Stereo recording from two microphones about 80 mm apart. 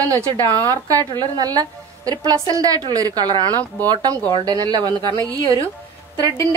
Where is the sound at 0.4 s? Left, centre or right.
Right.